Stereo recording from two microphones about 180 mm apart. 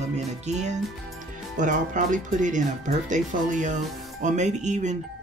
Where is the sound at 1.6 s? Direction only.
45° right (ahead or behind).